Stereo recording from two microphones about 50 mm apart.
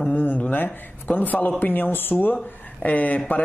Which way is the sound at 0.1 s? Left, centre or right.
Left.